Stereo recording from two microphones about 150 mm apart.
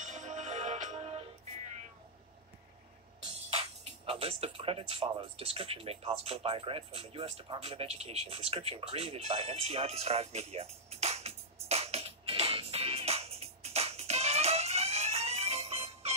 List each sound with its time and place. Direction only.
0.0 s music: 55° right (ahead or behind)
3.4 s music: 40° right (ahead or behind)